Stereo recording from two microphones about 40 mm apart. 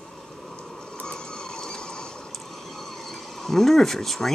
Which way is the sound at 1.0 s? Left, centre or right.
Left.